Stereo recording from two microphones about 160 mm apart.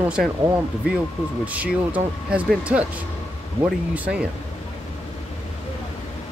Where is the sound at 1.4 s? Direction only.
10° right (ahead or behind).